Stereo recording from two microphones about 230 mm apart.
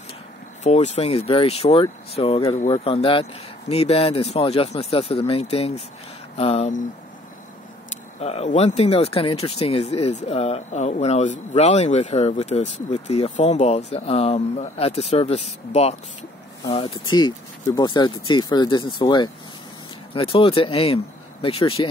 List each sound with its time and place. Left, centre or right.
0.7 s speech: left
8.2 s speech: left